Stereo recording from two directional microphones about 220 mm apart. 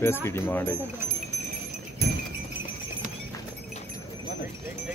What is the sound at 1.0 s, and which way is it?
Speech, 10° right (ahead or behind).